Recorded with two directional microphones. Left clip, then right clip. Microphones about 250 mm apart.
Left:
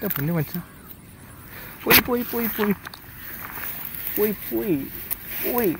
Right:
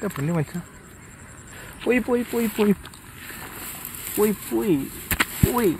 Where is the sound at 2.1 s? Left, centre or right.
Centre.